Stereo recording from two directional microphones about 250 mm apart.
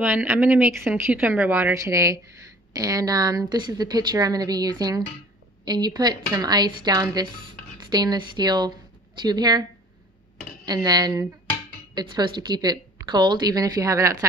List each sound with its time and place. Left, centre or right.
0.0 s a woman's voice: centre